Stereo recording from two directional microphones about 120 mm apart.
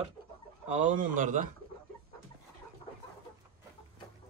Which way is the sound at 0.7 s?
90° right.